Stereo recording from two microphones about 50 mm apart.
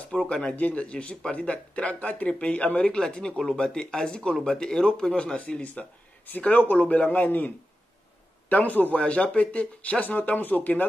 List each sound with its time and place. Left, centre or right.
0.1 s a man's voice: centre; by 10.9 s left